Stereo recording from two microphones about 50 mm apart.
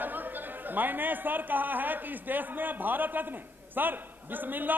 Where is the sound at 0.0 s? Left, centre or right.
Right.